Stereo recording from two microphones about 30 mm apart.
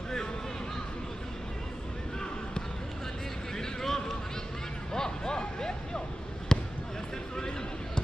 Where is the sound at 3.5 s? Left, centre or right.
Centre.